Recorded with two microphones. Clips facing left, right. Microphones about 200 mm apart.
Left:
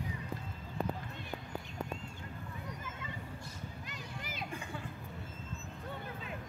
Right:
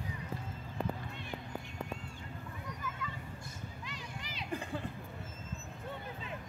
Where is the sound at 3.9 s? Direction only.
50° left (ahead or behind).